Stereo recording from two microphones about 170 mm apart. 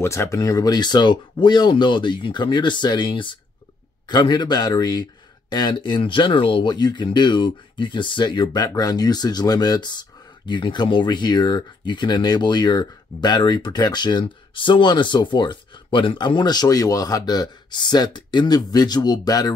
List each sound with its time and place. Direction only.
0.0 s speech: 15° left (ahead or behind)